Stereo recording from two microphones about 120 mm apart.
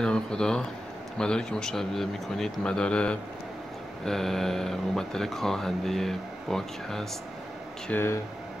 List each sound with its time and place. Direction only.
0.0 s speech: 5° left (ahead or behind)
7.9 s speech: 20° left (ahead or behind)